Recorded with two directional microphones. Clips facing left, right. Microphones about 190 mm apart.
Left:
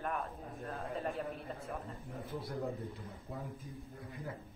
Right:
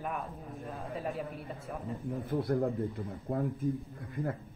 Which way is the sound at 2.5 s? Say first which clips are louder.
Right 9 dB; 55° right (ahead or behind).